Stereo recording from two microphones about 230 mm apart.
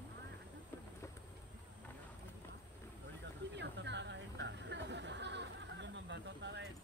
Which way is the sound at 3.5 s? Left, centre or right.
Right.